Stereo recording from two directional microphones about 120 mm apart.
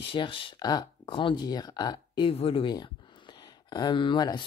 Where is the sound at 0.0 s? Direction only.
45° left (ahead or behind).